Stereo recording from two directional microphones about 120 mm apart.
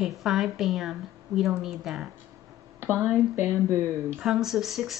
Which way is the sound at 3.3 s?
20° right (ahead or behind).